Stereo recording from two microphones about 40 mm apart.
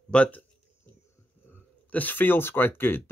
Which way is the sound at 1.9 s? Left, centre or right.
Left.